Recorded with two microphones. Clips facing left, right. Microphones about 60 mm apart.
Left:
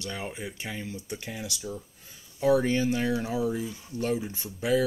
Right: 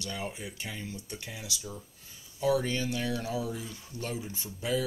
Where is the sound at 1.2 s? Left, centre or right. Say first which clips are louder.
Left 4 dB; left.